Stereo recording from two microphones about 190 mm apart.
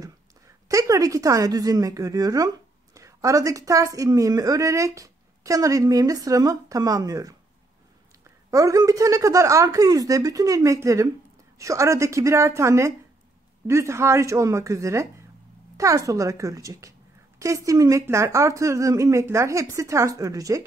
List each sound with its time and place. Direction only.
0.7 s a woman's voice: 15° right (ahead or behind)
8.5 s a woman's voice: 15° right (ahead or behind)